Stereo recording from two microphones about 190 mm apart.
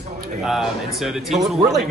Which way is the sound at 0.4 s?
Centre (ahead or behind).